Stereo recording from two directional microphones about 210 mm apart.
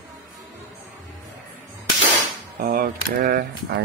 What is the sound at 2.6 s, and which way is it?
Speech, 45° right (ahead or behind).